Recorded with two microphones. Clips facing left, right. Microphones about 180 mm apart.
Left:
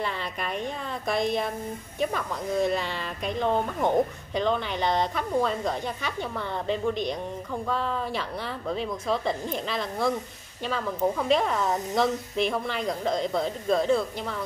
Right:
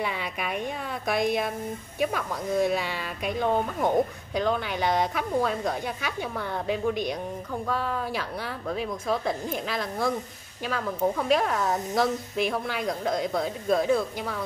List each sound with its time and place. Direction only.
0.0 s speech: 10° right (ahead or behind)